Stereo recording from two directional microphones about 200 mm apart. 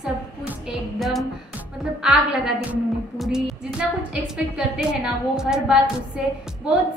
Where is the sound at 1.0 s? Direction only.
Centre (ahead or behind).